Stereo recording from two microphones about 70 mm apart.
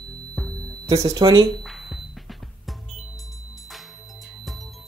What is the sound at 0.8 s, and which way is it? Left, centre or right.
Speech, right.